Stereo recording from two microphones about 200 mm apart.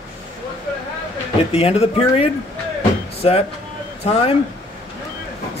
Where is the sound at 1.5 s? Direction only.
30° left (ahead or behind).